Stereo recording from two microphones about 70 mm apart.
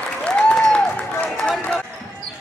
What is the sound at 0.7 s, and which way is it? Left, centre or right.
Applause, centre.